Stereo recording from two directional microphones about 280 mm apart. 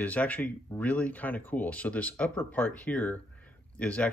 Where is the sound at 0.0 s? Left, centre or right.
Centre.